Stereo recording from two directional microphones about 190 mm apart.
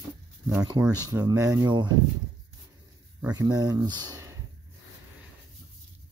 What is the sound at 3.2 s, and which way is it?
Speech, 20° right (ahead or behind).